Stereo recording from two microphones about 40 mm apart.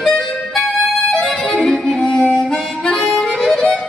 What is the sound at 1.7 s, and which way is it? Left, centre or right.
Music, centre.